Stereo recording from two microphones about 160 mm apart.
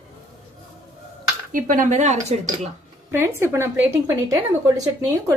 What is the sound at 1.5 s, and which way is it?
Speech, 55° right (ahead or behind).